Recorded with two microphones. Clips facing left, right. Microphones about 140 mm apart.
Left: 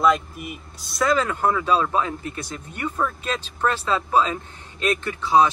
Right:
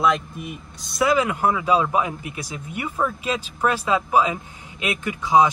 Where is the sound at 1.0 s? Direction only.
10° right (ahead or behind).